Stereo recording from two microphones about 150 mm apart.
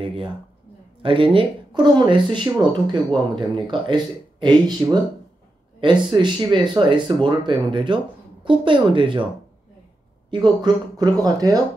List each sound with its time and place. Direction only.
0.0 s speech: 40° right (ahead or behind)
10.3 s speech: 30° right (ahead or behind)